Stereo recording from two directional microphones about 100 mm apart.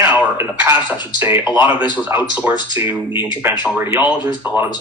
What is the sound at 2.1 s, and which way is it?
Speech, 25° right (ahead or behind).